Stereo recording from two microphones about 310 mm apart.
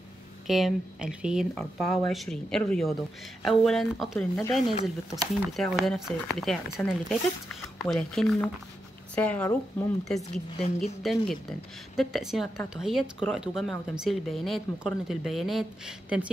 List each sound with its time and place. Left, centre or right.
0.5 s speech: centre
10.6 s speech: centre
11.0 s speech: centre